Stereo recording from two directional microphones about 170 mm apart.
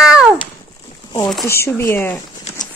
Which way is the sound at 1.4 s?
15° left (ahead or behind).